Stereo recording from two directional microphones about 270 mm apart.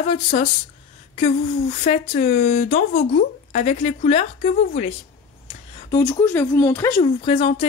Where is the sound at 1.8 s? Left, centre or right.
Left.